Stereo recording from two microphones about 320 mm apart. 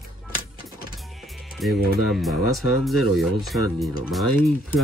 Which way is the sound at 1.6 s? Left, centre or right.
Centre.